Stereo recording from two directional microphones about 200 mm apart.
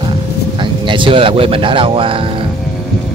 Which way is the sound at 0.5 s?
25° right (ahead or behind).